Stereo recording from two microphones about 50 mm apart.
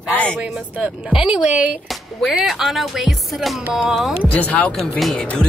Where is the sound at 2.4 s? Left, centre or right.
Centre.